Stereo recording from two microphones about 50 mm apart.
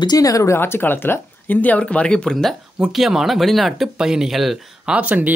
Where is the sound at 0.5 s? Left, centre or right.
Left.